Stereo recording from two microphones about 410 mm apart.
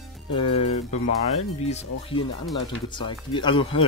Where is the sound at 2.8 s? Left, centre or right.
Centre.